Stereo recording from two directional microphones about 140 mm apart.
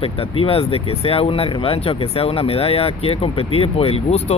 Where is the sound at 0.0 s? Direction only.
40° left (ahead or behind).